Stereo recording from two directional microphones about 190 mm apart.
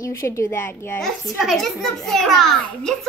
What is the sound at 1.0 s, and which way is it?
A child's voice, centre (ahead or behind).